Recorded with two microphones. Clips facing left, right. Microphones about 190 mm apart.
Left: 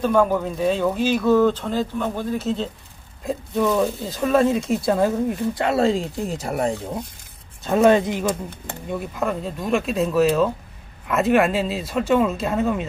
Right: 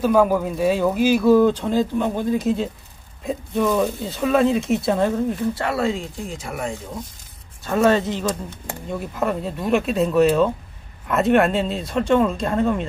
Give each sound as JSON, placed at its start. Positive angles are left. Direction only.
{"t": 0.0, "sound": "speech", "side_deg": -5}
{"t": 3.3, "sound": "speech", "side_deg": 0}
{"t": 5.8, "sound": "speech", "side_deg": 35}
{"t": 7.6, "sound": "speech", "side_deg": 15}
{"t": 9.0, "sound": "speech", "side_deg": 0}